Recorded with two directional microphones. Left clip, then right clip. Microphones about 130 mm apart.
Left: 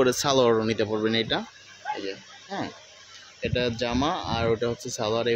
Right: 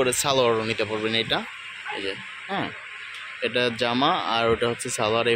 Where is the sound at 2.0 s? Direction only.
5° right (ahead or behind).